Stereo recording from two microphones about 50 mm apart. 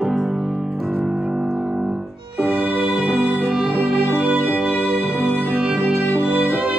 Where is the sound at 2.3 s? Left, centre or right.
Right.